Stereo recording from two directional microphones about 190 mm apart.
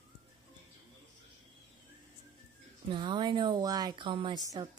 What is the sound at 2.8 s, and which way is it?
A woman's voice, 25° right (ahead or behind).